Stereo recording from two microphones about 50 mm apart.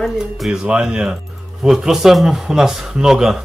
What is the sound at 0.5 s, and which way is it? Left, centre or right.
Speech, centre.